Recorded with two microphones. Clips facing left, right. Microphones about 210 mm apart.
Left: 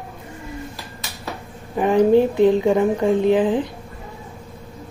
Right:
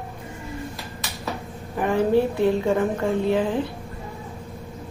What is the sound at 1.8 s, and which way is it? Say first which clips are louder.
A woman's voice: left 5 dB; 20° left (ahead or behind).